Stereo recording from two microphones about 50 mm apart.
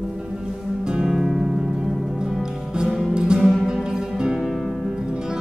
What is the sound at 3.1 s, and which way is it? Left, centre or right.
Music, centre.